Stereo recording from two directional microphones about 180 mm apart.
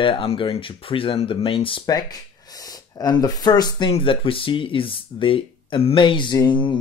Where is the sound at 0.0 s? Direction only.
30° left (ahead or behind).